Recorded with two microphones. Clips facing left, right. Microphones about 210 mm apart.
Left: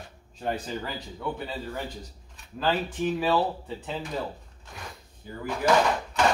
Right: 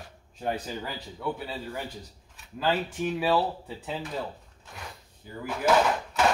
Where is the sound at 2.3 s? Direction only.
5° right (ahead or behind).